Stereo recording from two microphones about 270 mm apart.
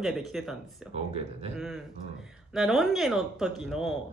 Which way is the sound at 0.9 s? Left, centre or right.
Right.